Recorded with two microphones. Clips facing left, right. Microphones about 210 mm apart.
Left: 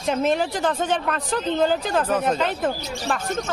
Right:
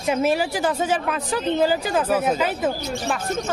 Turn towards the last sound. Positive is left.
turn(degrees=-5)  # may be behind; listen again after turning